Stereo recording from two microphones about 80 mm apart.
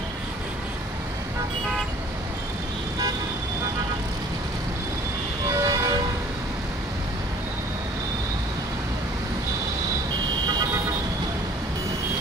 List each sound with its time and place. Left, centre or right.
5.5 s vehicle: right